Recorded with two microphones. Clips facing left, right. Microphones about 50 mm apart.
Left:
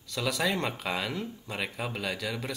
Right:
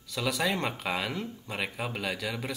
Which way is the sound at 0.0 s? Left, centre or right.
Centre.